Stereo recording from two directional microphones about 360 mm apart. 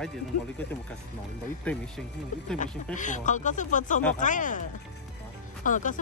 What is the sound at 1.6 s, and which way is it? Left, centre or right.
Speech, centre.